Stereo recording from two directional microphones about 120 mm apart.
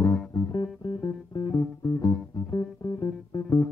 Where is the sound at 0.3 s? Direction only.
35° left (ahead or behind).